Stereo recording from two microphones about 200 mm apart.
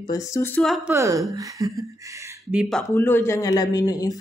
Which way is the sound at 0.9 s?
15° right (ahead or behind).